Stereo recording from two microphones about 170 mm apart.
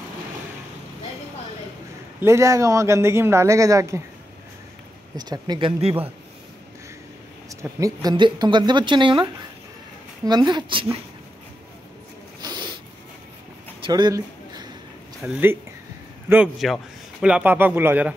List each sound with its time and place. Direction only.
2.1 s a man's voice: 15° right (ahead or behind)
5.1 s a woman's voice: 25° right (ahead or behind)
7.4 s a woman's voice: 20° right (ahead or behind)
12.4 s snort: 25° right (ahead or behind)
13.8 s a sound: 25° right (ahead or behind)
15.2 s a man's voice: 10° right (ahead or behind)